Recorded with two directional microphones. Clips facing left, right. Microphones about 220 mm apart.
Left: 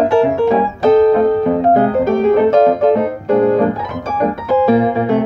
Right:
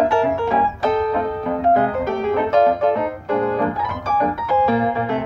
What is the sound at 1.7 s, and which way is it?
Piano, 40° left (ahead or behind).